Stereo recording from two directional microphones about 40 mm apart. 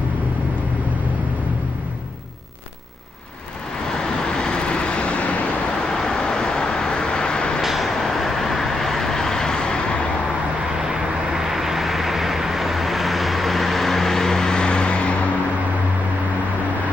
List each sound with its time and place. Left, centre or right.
3.9 s vehicle: centre
5.9 s vehicle: centre
7.6 s vehicle: centre; by 10.0 s left
10.8 s vehicle: centre; by 15.1 s left